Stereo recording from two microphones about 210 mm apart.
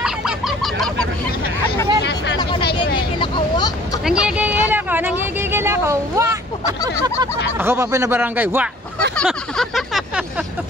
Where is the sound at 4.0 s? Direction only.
5° right (ahead or behind).